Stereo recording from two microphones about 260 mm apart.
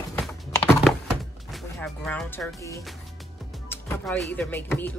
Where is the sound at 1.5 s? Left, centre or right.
Centre.